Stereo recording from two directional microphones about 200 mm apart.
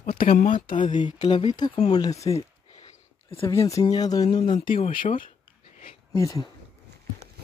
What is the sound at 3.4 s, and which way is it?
Speech, 15° left (ahead or behind).